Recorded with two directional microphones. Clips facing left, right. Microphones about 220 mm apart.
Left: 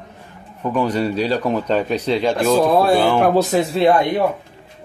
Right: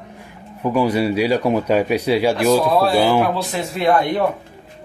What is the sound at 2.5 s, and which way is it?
Speech, 50° left (ahead or behind).